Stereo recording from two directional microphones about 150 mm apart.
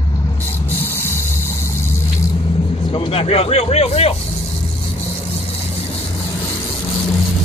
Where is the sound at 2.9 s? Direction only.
35° left (ahead or behind).